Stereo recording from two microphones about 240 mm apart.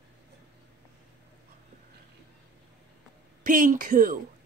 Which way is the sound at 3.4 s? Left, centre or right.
Right.